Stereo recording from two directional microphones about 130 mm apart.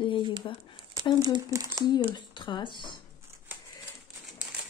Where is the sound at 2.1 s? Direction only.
40° left (ahead or behind).